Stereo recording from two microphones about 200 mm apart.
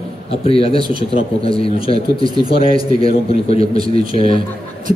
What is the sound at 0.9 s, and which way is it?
Speech, 45° right (ahead or behind).